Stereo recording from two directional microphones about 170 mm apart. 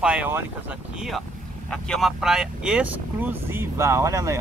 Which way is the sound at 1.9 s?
Centre (ahead or behind).